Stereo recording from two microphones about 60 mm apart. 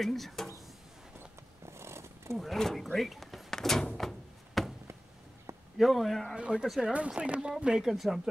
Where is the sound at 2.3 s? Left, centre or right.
Centre.